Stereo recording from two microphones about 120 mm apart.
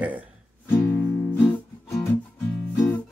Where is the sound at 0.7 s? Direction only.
15° left (ahead or behind).